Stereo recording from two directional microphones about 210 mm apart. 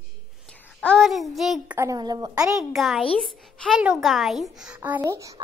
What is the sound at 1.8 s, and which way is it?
Speech, 15° right (ahead or behind).